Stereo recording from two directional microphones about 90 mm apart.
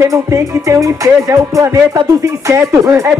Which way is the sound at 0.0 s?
35° right (ahead or behind).